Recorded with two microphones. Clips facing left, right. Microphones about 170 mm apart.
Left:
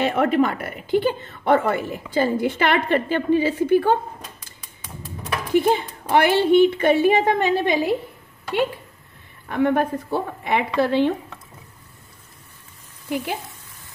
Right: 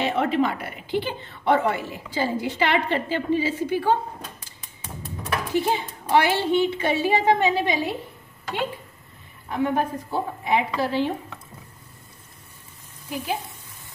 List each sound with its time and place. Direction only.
0.0 s a woman's voice: 50° left (ahead or behind)
5.5 s a woman's voice: 55° left (ahead or behind)
9.5 s a woman's voice: 65° left (ahead or behind)